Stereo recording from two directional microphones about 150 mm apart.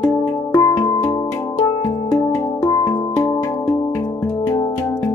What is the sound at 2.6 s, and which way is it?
Music, 20° left (ahead or behind).